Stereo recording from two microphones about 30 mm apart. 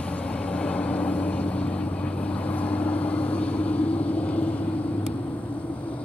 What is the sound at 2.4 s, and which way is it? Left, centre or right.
Vehicle, left.